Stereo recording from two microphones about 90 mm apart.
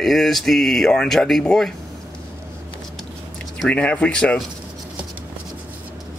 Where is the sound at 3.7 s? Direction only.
15° left (ahead or behind).